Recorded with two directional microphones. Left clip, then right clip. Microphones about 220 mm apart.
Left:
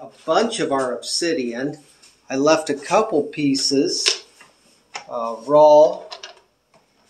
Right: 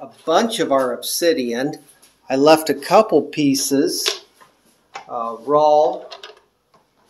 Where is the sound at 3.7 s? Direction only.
35° right (ahead or behind).